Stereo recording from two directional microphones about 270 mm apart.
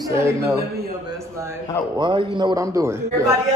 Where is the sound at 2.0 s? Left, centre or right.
Centre.